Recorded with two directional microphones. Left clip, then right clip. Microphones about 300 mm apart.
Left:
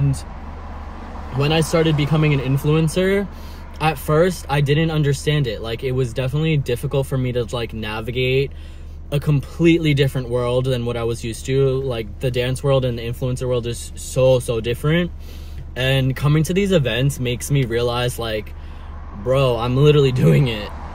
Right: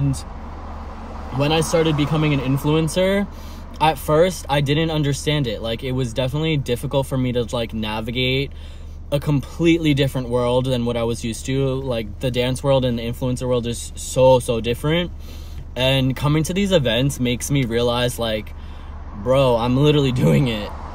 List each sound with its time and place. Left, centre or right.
1.4 s speech: centre
19.2 s speech: centre